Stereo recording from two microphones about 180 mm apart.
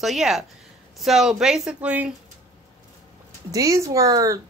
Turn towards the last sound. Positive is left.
turn(degrees=-20)  # may be behind; listen again after turning